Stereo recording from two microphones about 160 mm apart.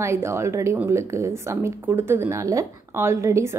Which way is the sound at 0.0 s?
15° right (ahead or behind).